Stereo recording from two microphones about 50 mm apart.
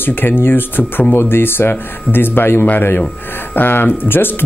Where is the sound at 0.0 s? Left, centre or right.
Left.